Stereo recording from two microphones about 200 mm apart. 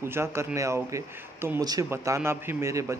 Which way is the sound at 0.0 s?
15° right (ahead or behind).